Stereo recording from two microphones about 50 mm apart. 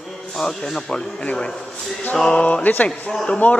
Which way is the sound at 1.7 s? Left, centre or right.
Centre.